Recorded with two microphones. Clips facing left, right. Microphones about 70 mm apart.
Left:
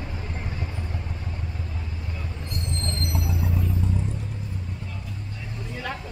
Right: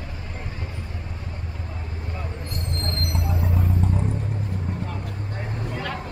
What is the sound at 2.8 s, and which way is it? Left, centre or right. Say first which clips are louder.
Music: right 2 dB; right.